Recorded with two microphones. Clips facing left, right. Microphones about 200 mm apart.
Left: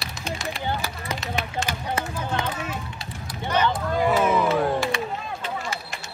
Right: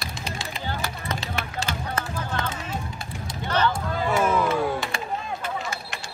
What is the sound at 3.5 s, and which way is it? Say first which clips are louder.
Speech: left 1 dB; 10° left (ahead or behind).